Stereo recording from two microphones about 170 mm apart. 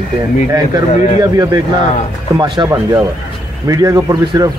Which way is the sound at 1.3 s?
20° right (ahead or behind).